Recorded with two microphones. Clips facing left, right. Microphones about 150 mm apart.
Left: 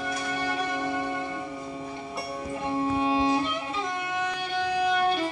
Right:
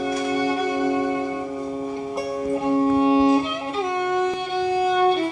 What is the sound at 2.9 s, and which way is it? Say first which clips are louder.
Music: right 7 dB; 45° right (ahead or behind).